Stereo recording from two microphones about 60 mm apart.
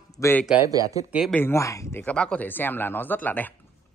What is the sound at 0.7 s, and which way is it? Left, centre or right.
Speech, right.